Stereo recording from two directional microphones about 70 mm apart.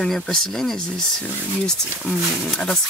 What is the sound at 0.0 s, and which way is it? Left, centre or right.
Speech, centre.